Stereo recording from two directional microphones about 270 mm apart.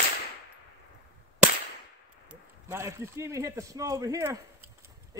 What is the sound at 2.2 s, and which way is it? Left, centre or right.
A man's voice, centre.